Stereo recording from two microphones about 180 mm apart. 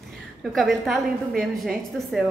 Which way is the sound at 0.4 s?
Centre (ahead or behind).